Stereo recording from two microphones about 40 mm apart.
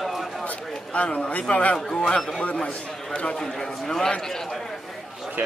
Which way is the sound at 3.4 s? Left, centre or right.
Centre.